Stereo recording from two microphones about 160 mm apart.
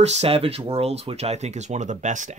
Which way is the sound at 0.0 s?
40° right (ahead or behind).